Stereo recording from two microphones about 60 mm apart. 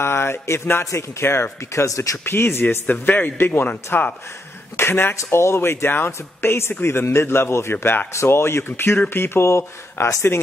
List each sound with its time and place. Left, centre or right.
0.0 s speech: left
0.8 s speech: left
2.2 s a man's voice: left
5.1 s speech: left